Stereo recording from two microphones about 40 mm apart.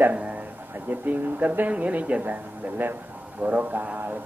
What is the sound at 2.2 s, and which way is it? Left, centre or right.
Speech, right.